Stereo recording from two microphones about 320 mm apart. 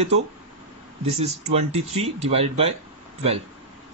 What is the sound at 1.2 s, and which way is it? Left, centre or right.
Speech, centre.